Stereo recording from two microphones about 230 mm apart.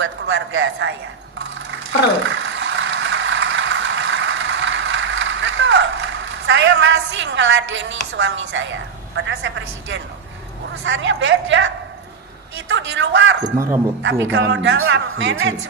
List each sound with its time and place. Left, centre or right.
0.0 s a woman's voice: right
2.2 s ratchet: right
10.7 s a woman's voice: right